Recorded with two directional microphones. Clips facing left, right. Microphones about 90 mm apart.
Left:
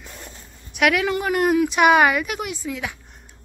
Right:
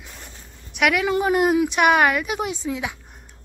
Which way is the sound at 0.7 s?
Centre (ahead or behind).